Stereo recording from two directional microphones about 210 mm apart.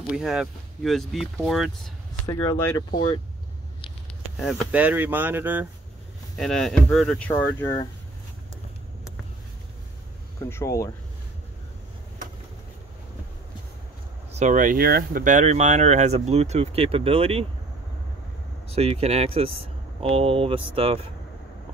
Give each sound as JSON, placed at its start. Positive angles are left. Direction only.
{"t": 0.0, "sound": "speech", "side_deg": -5}
{"t": 2.2, "sound": "speech", "side_deg": 10}
{"t": 4.4, "sound": "speech", "side_deg": -5}
{"t": 10.4, "sound": "speech", "side_deg": 15}
{"t": 14.3, "sound": "speech", "side_deg": -35}
{"t": 18.7, "sound": "speech", "side_deg": -30}